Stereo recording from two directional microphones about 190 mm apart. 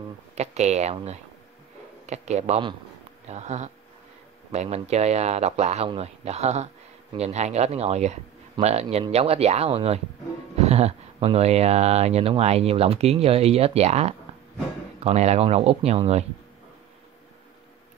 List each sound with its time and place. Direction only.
0.4 s speech: 35° right (ahead or behind)